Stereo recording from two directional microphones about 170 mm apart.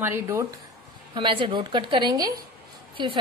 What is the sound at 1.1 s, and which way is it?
A woman's voice, 30° right (ahead or behind).